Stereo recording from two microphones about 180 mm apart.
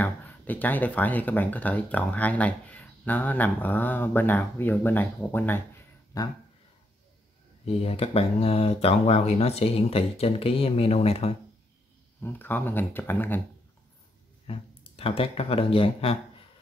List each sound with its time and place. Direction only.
0.0 s speech: 10° left (ahead or behind)
7.6 s speech: 35° left (ahead or behind)
12.2 s speech: 10° left (ahead or behind)
14.5 s speech: 30° left (ahead or behind)